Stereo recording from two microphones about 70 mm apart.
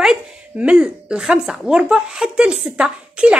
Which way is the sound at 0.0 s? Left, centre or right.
Centre.